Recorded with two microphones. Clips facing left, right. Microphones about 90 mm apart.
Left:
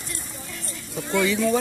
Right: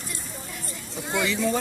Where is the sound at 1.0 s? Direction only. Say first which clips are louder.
Left 4 dB; 15° right (ahead or behind).